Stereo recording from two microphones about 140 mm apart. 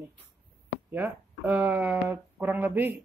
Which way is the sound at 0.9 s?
15° right (ahead or behind).